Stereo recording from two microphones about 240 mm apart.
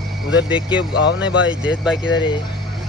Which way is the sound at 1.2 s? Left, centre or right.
Centre.